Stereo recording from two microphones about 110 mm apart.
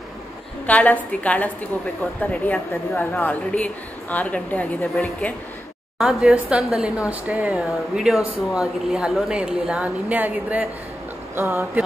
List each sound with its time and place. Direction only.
0.7 s a woman's voice: 15° left (ahead or behind)
5.9 s a woman's voice: 5° right (ahead or behind); by 11.8 s 20° right (ahead or behind)